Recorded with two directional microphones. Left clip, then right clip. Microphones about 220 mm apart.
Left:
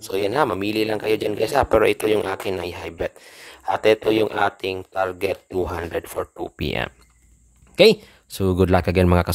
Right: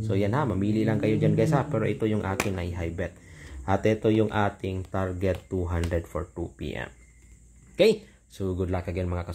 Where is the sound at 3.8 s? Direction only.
35° left (ahead or behind).